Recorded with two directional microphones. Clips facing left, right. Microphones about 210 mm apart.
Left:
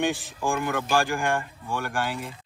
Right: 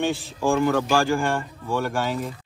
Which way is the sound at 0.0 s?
15° left (ahead or behind).